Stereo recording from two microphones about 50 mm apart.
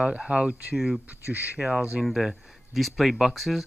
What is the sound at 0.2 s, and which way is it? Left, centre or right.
Speech, right.